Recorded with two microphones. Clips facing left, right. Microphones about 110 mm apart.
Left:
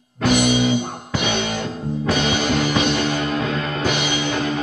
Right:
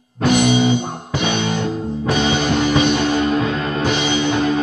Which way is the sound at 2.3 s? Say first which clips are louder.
Right 3 dB; 25° right (ahead or behind).